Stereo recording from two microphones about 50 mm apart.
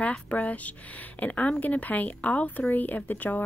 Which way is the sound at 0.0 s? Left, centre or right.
Left.